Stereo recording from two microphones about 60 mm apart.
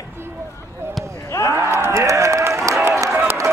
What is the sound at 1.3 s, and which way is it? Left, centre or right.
Speech, left.